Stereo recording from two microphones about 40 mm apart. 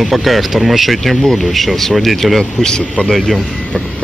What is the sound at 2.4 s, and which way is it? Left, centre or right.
Speech, centre.